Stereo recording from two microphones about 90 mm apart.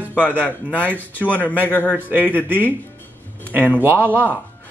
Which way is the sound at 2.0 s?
20° right (ahead or behind).